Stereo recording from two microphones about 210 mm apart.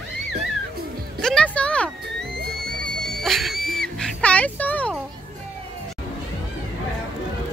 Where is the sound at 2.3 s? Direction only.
45° right (ahead or behind).